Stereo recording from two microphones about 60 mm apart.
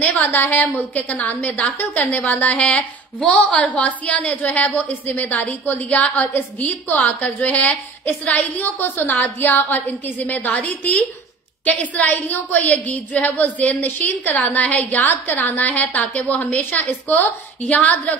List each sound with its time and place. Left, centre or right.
0.0 s a woman's voice: left
17.6 s a woman's voice: left